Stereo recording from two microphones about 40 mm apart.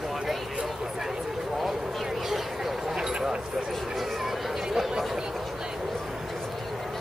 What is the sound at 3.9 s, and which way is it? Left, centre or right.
Chatter, centre.